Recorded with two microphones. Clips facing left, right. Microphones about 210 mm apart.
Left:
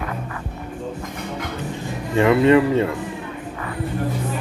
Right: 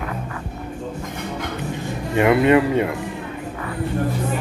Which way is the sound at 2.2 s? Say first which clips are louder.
Left 1 dB; 15° right (ahead or behind).